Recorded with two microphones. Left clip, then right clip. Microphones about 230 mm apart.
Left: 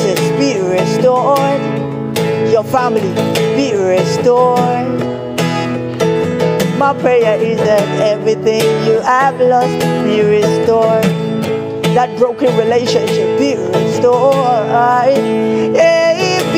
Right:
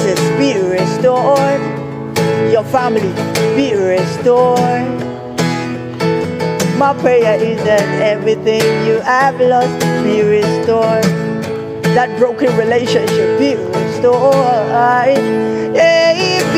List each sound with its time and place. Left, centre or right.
0.4 s music: centre
6.8 s music: centre